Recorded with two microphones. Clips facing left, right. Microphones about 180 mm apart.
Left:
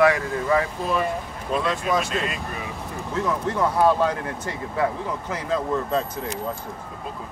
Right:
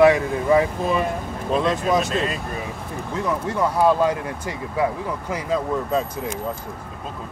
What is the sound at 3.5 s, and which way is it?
Speech, 10° right (ahead or behind).